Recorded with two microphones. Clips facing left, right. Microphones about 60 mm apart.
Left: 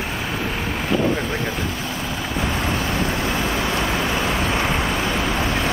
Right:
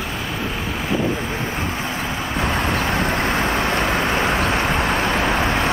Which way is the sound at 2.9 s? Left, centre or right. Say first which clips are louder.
Right 2 dB; right.